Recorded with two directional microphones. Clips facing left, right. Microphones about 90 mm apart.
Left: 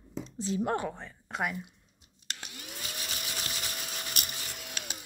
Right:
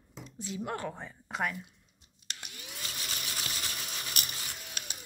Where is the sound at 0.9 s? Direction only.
10° right (ahead or behind).